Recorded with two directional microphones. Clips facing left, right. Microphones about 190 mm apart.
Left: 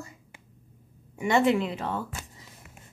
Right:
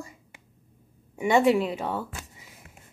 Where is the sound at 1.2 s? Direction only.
10° right (ahead or behind).